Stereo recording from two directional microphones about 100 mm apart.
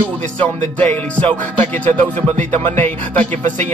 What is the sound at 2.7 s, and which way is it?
Speech, 20° left (ahead or behind).